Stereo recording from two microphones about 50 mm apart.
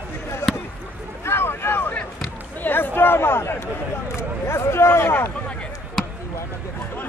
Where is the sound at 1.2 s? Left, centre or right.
Left.